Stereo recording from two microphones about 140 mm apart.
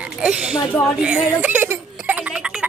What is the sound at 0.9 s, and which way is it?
Speech, 5° right (ahead or behind).